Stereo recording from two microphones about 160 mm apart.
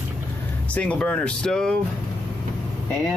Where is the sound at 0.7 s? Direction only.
10° left (ahead or behind).